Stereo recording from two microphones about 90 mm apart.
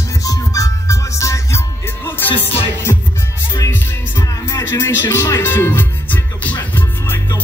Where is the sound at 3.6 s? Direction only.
30° left (ahead or behind).